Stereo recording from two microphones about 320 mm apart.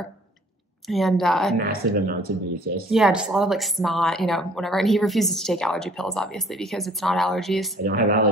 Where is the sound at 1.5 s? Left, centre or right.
Right.